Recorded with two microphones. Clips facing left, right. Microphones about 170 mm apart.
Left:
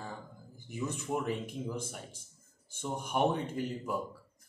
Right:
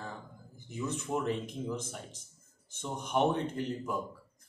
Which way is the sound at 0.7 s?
10° left (ahead or behind).